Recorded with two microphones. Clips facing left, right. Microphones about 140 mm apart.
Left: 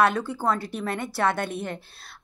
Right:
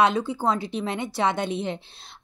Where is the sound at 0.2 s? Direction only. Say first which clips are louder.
Right 1 dB; 15° right (ahead or behind).